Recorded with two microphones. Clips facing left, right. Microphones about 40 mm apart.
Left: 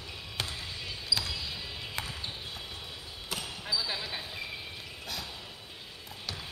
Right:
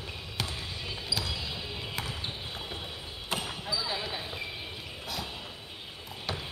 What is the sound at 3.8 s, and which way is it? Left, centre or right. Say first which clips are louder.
Basketball bounce: right 2 dB; centre.